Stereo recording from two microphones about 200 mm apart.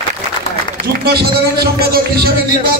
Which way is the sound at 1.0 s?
50° right (ahead or behind).